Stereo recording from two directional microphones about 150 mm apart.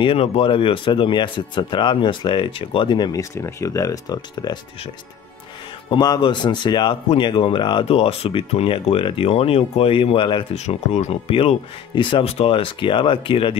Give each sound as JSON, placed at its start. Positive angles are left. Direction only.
{"t": 0.0, "sound": "speech", "side_deg": 40}
{"t": 5.9, "sound": "speech", "side_deg": 30}
{"t": 10.5, "sound": "speech", "side_deg": 45}